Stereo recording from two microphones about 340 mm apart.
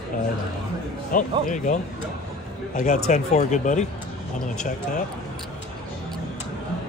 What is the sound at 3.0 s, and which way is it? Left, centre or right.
Speech, left.